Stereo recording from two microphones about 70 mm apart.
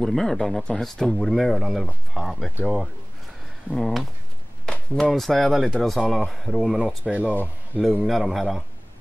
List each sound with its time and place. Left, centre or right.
0.0 s speech: centre
7.1 s speech: centre
8.0 s speech: centre